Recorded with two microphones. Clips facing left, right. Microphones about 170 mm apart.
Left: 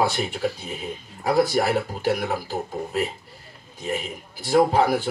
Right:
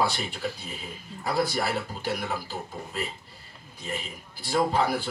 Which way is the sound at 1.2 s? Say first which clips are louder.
Left 7 dB; 45° left (ahead or behind).